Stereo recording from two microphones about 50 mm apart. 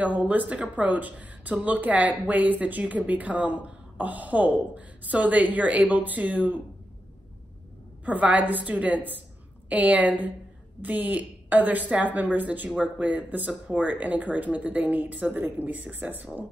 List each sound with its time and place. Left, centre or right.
0.0 s speech: right
8.0 s speech: right